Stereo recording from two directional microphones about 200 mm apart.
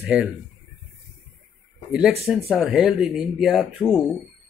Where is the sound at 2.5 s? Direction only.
5° right (ahead or behind).